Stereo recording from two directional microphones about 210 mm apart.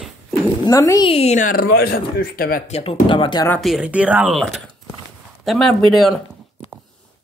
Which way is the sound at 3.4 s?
5° left (ahead or behind).